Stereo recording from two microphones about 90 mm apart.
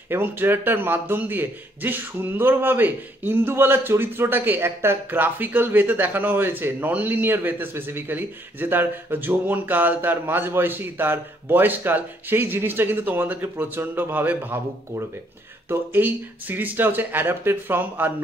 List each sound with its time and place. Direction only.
0.1 s a man's voice: 25° right (ahead or behind)